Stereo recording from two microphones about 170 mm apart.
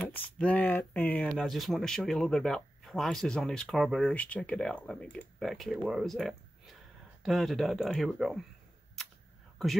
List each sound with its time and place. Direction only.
0.1 s speech: 10° left (ahead or behind)